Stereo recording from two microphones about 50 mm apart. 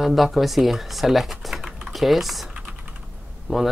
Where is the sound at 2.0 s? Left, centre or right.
Centre.